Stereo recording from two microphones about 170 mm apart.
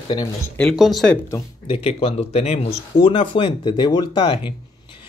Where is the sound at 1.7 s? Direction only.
35° left (ahead or behind).